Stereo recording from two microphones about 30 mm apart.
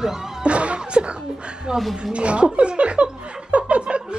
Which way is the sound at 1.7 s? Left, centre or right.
Right.